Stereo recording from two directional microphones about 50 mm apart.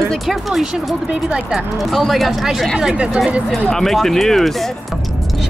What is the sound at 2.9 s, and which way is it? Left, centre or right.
Speech, right.